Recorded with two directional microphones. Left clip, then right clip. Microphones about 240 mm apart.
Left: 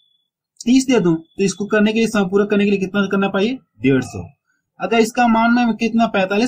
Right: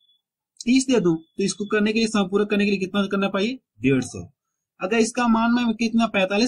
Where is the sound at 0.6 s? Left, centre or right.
Centre.